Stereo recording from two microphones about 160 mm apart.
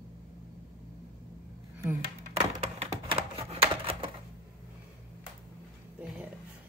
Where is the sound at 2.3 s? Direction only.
40° right (ahead or behind).